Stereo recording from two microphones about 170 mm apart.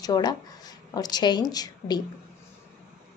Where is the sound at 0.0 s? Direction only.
25° left (ahead or behind).